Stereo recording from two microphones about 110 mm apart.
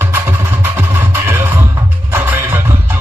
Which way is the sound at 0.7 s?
20° right (ahead or behind).